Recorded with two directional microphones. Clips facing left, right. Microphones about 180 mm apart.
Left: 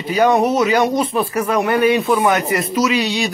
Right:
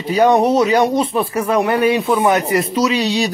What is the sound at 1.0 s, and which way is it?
Speech, centre (ahead or behind).